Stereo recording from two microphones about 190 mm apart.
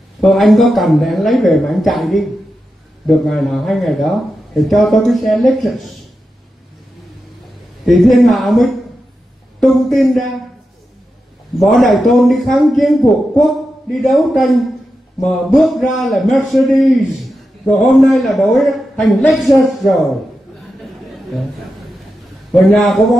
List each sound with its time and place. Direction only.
0.2 s a man's voice: centre (ahead or behind)
7.8 s a man's voice: centre (ahead or behind)
11.6 s a man's voice: centre (ahead or behind)
22.7 s a man's voice: centre (ahead or behind)